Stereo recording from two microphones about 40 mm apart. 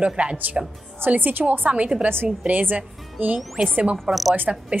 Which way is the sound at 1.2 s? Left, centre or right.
Right.